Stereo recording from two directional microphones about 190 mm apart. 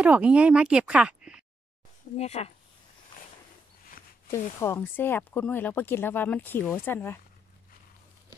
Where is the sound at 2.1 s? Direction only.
35° left (ahead or behind).